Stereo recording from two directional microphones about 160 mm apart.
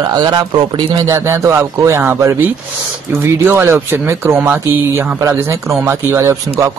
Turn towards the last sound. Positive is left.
turn(degrees=-15)  # may be behind; listen again after turning